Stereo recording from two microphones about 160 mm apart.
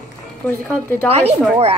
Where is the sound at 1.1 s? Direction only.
40° right (ahead or behind).